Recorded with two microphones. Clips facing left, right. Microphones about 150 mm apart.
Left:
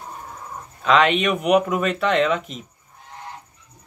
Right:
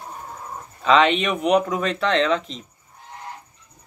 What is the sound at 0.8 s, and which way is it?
Speech, centre (ahead or behind).